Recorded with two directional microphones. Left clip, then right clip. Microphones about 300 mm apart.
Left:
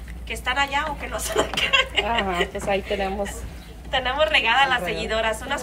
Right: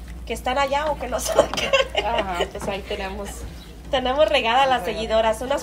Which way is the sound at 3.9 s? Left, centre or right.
Centre.